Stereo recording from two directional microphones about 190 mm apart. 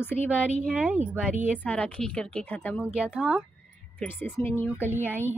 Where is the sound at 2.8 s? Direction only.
5° right (ahead or behind); by 4.7 s 10° left (ahead or behind).